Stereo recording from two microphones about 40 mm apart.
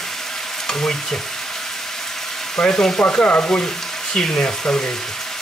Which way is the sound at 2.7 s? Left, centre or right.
Centre.